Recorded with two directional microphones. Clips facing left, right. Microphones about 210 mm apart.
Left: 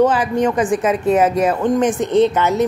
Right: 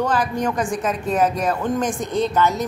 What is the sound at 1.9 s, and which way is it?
Speech, 25° left (ahead or behind).